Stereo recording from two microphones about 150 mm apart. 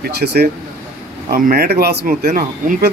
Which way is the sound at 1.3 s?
80° right.